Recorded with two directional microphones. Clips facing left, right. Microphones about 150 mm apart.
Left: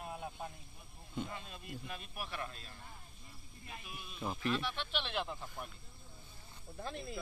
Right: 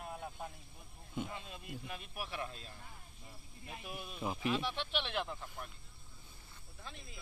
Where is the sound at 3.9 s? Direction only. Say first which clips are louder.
Right 5 dB; 45° right (ahead or behind).